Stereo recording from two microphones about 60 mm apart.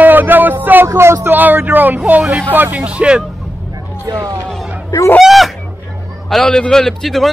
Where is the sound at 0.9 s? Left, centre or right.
Right.